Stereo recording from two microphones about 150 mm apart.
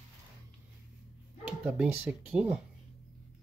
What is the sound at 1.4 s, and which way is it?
Speech, 10° right (ahead or behind).